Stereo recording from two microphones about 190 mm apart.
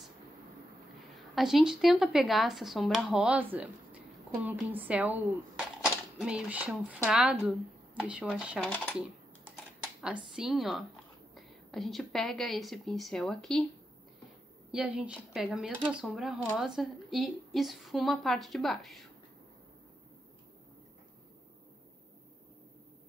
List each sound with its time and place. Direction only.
1.1 s a woman's voice: centre (ahead or behind)
10.0 s a woman's voice: 5° right (ahead or behind)
14.7 s a woman's voice: 5° right (ahead or behind)